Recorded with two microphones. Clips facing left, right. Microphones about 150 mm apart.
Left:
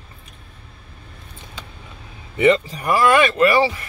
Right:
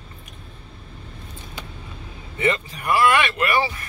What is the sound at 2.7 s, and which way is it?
Speech, 40° left (ahead or behind).